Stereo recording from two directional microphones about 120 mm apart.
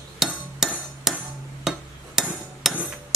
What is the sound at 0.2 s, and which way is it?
Hammer, 5° right (ahead or behind).